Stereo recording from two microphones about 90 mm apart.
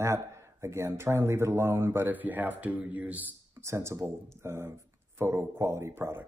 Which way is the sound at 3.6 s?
30° right (ahead or behind).